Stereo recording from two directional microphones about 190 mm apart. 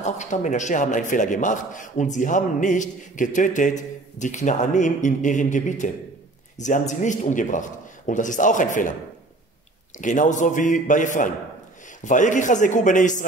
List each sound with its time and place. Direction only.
0.0 s a man's voice: 40° left (ahead or behind)
9.9 s a man's voice: 40° left (ahead or behind)